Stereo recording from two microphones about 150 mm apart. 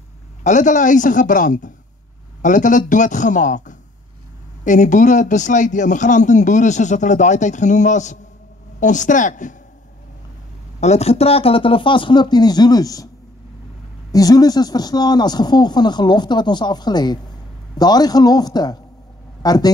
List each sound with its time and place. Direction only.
0.4 s a man's voice: 55° left (ahead or behind)
10.8 s speech: 45° left (ahead or behind); by 13.1 s 25° left (ahead or behind)
14.1 s speech: 25° left (ahead or behind)